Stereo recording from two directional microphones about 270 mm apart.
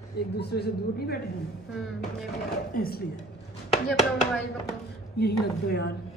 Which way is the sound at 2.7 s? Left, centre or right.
Left.